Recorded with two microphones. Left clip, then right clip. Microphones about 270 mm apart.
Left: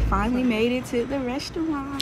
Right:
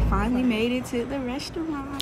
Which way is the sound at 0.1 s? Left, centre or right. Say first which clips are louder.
Left 2 dB; centre.